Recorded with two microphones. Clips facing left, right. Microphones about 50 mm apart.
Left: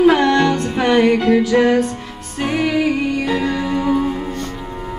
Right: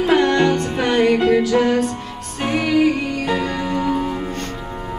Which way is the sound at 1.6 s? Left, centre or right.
Left.